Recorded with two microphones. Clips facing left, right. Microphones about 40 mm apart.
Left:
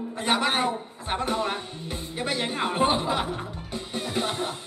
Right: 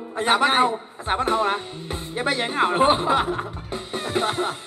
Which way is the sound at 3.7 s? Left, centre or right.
Right.